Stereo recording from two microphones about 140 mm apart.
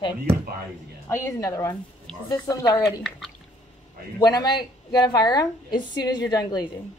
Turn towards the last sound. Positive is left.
turn(degrees=30)  # may be behind; listen again after turning